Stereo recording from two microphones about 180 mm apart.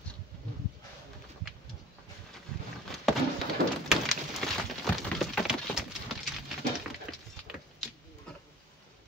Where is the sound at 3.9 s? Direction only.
Centre (ahead or behind).